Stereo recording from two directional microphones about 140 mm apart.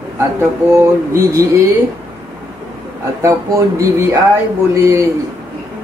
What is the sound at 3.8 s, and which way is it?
Speech, 25° right (ahead or behind).